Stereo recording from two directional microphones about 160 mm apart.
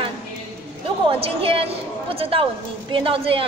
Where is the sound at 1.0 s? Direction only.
35° right (ahead or behind).